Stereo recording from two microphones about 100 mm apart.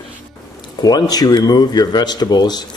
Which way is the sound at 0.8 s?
45° left (ahead or behind).